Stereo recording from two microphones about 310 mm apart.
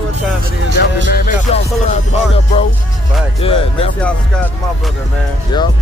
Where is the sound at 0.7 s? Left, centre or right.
Left.